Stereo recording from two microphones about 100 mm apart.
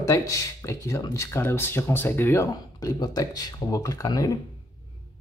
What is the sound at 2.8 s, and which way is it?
Speech, 40° left (ahead or behind).